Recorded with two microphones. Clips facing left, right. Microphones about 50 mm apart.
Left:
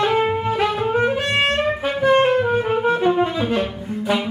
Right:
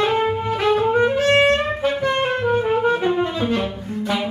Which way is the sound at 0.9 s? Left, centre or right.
Centre.